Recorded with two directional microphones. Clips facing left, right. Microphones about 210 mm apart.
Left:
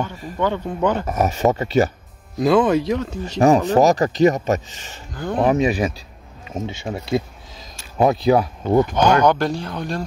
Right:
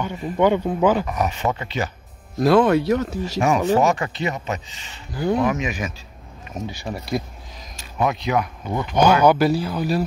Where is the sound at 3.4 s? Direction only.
35° left (ahead or behind).